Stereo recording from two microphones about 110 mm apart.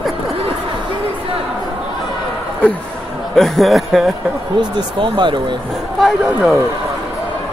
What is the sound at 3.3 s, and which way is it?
Speech, centre (ahead or behind).